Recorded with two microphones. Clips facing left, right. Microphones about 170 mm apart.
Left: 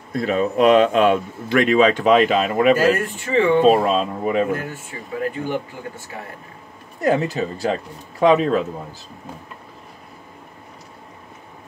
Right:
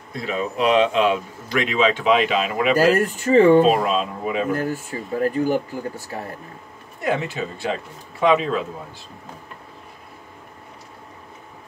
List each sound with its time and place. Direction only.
0.1 s a man's voice: 45° left (ahead or behind)
2.8 s speech: 40° right (ahead or behind)
3.6 s speech: 40° left (ahead or behind)
4.5 s speech: 40° right (ahead or behind)
7.0 s speech: 40° left (ahead or behind)